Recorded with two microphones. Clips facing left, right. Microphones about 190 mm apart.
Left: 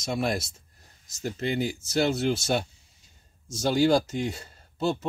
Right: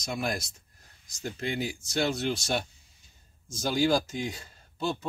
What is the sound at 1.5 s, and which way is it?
Speech, centre (ahead or behind).